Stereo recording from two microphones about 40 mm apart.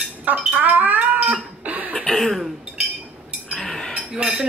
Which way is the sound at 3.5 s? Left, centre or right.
Centre.